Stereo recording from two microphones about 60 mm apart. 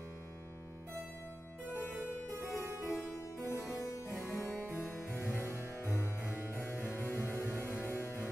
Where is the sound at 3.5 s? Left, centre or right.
Left.